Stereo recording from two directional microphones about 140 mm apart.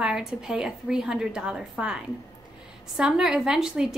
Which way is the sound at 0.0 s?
5° right (ahead or behind).